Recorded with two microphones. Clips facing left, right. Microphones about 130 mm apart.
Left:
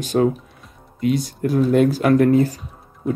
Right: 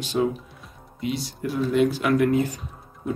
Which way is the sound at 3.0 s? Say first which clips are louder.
Left 6 dB; centre (ahead or behind).